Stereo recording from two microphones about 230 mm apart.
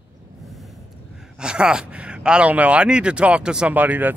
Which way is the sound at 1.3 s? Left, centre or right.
Centre.